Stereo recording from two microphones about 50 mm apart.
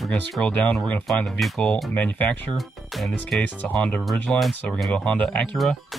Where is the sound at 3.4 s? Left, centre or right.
Left.